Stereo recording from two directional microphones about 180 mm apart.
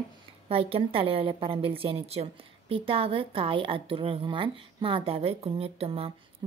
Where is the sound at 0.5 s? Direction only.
30° right (ahead or behind).